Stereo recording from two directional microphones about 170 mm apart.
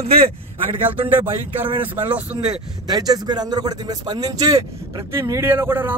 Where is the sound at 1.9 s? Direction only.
10° right (ahead or behind).